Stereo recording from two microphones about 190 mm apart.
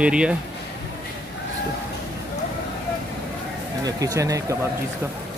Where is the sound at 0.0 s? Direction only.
5° right (ahead or behind).